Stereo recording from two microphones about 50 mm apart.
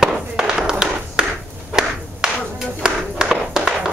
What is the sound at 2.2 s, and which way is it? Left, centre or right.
Clapping, centre.